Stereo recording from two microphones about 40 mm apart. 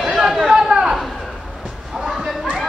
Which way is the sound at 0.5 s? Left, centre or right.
Centre.